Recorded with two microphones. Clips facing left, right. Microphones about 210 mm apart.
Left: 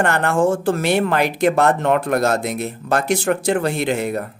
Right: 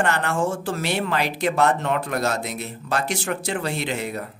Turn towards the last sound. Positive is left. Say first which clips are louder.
# left 7 dB
turn(degrees=50)  # may be behind; listen again after turning